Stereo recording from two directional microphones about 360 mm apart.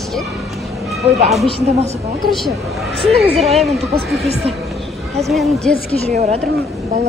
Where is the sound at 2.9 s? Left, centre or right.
Centre.